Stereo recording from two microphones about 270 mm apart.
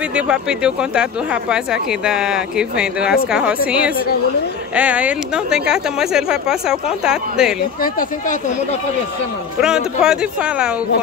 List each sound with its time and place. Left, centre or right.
0.1 s speech: centre
7.8 s speech: left
9.6 s speech: centre